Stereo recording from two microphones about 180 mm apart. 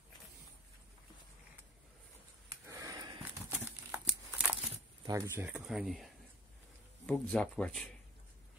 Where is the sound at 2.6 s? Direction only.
20° right (ahead or behind).